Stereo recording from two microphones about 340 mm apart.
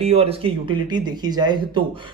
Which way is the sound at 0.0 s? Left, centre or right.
Centre.